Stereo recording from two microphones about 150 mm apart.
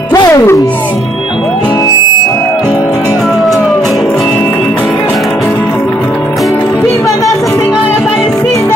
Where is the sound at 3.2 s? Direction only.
Centre (ahead or behind).